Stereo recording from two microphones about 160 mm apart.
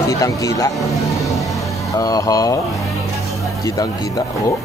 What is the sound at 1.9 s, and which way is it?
Speech, 20° left (ahead or behind).